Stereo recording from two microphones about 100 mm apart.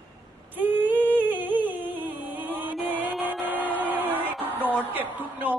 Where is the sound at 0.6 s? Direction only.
20° right (ahead or behind).